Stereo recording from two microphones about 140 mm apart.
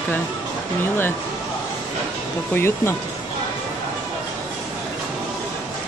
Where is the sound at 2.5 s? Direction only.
15° left (ahead or behind).